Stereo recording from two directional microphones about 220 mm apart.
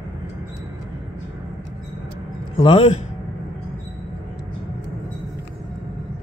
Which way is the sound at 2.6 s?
25° left (ahead or behind).